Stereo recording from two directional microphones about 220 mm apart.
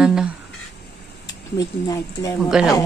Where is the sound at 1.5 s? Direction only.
15° left (ahead or behind).